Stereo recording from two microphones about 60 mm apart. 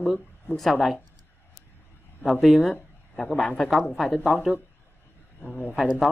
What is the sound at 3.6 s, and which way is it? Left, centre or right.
Speech, centre.